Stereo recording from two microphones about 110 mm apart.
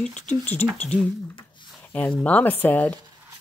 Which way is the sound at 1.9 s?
15° left (ahead or behind).